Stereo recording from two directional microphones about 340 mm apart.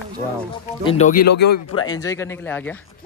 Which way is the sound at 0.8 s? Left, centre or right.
Centre.